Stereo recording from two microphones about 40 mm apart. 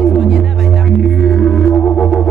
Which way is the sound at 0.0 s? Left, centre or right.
Centre.